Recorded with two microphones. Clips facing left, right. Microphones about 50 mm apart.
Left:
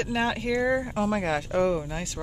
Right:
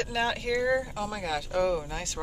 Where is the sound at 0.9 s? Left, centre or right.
Left.